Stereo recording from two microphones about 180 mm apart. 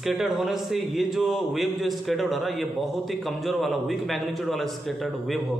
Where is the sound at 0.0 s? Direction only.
Centre (ahead or behind).